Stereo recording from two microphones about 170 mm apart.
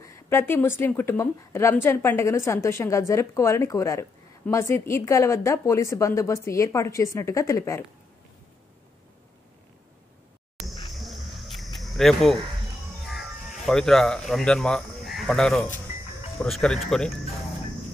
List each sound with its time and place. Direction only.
0.0 s a woman's voice: 15° left (ahead or behind)
10.9 s a sound: centre (ahead or behind)
13.0 s music: centre (ahead or behind)
13.7 s speech: centre (ahead or behind)